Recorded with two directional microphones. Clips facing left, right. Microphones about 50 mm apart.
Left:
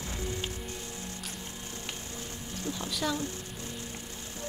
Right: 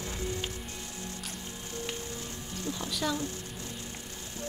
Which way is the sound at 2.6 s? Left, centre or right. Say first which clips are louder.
Even; left.